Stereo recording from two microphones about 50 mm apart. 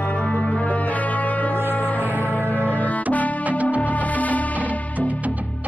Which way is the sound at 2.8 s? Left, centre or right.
Left.